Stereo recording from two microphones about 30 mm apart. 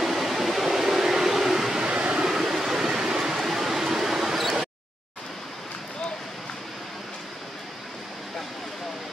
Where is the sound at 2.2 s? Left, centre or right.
Centre.